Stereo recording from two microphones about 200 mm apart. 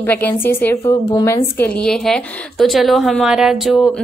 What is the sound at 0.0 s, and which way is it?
A woman's voice, 10° left (ahead or behind).